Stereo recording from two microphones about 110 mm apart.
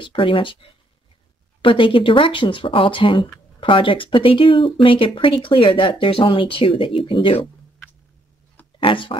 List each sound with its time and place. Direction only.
0.0 s speech: 50° left (ahead or behind)
8.7 s speech: 50° left (ahead or behind)